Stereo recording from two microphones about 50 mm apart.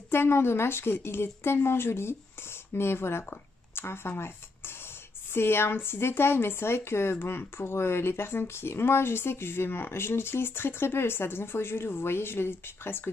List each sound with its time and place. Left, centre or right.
0.1 s speech: left